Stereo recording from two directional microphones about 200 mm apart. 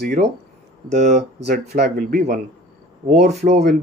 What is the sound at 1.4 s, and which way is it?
Speech, 55° right (ahead or behind).